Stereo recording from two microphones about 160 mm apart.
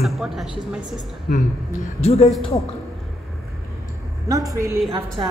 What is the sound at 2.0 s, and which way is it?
Speech, 40° left (ahead or behind).